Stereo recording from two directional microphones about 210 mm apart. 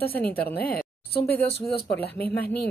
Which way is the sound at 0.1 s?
10° left (ahead or behind).